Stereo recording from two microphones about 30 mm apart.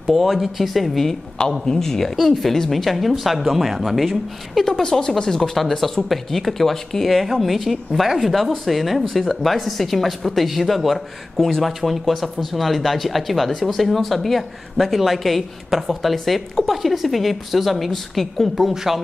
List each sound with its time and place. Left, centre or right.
0.1 s a woman's voice: centre
1.7 s a woman's voice: centre
2.1 s a woman's voice: centre
4.6 s a woman's voice: centre
6.0 s a woman's voice: centre